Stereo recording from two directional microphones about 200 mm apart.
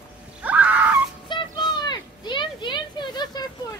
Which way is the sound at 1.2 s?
25° left (ahead or behind).